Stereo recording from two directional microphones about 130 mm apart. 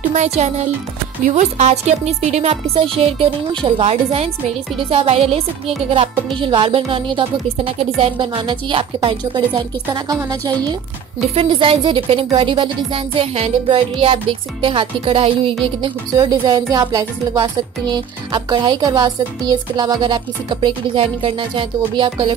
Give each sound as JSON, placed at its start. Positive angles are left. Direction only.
{"t": 0.1, "sound": "speech", "side_deg": -65}
{"t": 1.2, "sound": "music", "side_deg": -60}
{"t": 5.9, "sound": "speech", "side_deg": -45}
{"t": 11.1, "sound": "music", "side_deg": -45}
{"t": 15.6, "sound": "speech", "side_deg": -35}